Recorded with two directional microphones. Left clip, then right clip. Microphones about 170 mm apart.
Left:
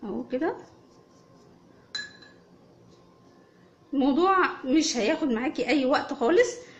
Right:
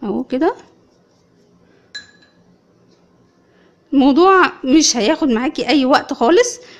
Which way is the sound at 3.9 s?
55° right (ahead or behind).